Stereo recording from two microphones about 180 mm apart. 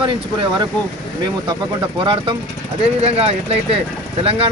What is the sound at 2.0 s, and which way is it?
A man's voice, 30° right (ahead or behind).